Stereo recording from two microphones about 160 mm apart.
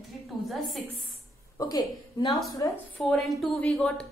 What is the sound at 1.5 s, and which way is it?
Speech, 20° left (ahead or behind).